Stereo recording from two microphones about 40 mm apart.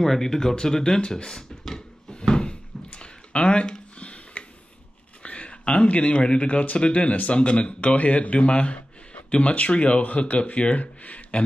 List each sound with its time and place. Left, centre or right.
0.0 s speech: centre
2.0 s a sound: left
4.0 s tick-tock: left
5.2 s speech: left